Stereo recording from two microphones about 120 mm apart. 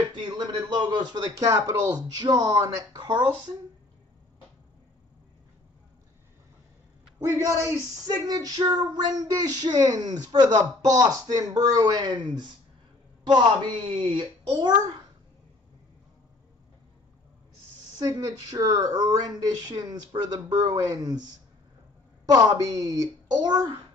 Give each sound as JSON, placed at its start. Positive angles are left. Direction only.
{"t": 0.2, "sound": "child singing", "side_deg": -40}
{"t": 7.2, "sound": "a man's voice", "side_deg": -25}
{"t": 8.3, "sound": "child singing", "side_deg": -30}
{"t": 17.9, "sound": "child singing", "side_deg": -30}
{"t": 22.3, "sound": "child singing", "side_deg": -30}